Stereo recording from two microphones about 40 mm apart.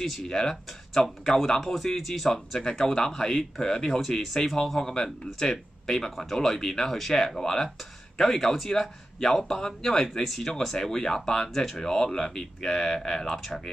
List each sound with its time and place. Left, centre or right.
0.0 s speech: centre
2.6 s speech: centre
4.2 s speech: centre